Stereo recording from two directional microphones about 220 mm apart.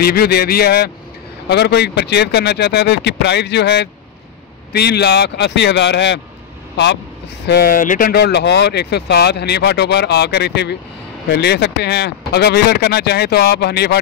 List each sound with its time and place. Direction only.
0.0 s speech: 45° left (ahead or behind)
7.4 s speech: 45° left (ahead or behind)